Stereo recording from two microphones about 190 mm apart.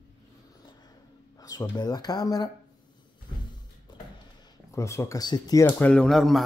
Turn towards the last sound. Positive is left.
turn(degrees=0)  # may be behind; listen again after turning